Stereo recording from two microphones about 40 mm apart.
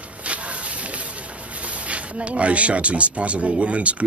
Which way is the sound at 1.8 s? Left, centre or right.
Right.